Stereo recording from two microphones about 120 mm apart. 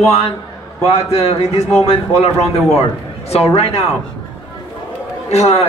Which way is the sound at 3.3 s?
60° left (ahead or behind).